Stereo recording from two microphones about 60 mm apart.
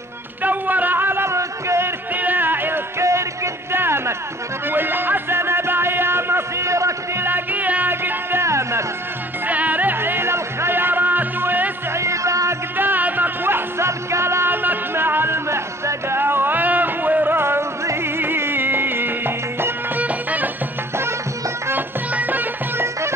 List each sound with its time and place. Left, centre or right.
0.4 s a sound: right
2.1 s a sound: right
3.0 s music: right
3.7 s music: right
7.2 s music: right
7.9 s music: right
8.5 s music: right
9.5 s music: right
12.0 s music: right
12.7 s music: right
22.1 s music: right